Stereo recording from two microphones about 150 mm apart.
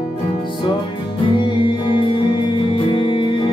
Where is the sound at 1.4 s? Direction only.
35° left (ahead or behind).